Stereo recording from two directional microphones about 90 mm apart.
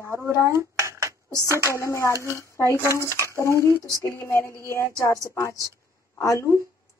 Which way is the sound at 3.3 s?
30° left (ahead or behind).